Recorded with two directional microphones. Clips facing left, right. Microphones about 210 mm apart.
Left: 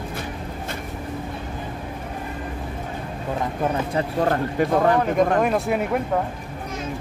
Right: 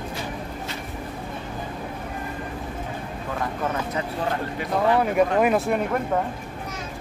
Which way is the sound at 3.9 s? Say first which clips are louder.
Left 5 dB; 45° left (ahead or behind).